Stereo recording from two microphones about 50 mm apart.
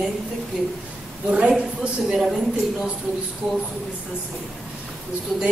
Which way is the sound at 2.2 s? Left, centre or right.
Centre.